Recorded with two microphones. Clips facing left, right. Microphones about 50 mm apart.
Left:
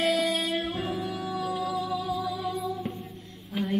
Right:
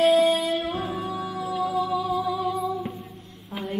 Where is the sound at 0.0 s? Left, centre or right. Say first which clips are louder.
Right 7 dB; right.